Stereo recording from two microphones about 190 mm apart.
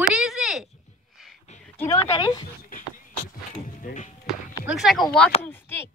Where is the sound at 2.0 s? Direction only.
20° left (ahead or behind).